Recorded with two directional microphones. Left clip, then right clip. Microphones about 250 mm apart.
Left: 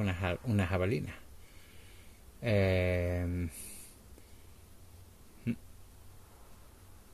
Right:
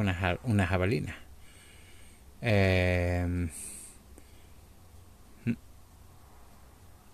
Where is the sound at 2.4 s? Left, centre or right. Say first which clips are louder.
Right 3 dB; centre.